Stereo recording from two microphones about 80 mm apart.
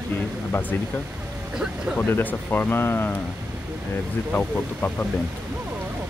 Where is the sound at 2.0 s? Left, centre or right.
Left.